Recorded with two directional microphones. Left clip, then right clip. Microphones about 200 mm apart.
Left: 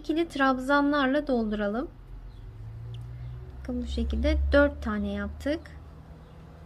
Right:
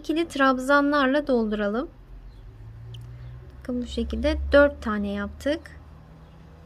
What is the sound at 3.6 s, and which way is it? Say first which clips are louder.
A woman's voice: right 4 dB; 20° right (ahead or behind).